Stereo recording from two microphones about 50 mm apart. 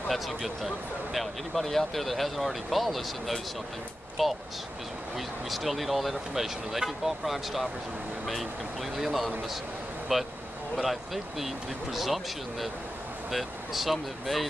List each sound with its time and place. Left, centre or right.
0.1 s speech: centre
8.9 s speech: centre